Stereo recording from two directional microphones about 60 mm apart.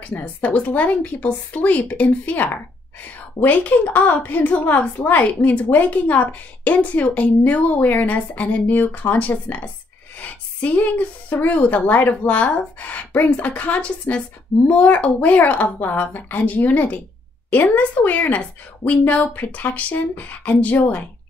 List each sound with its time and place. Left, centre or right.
0.1 s a woman's voice: left